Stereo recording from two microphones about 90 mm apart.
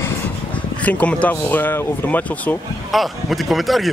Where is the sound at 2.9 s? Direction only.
Centre (ahead or behind).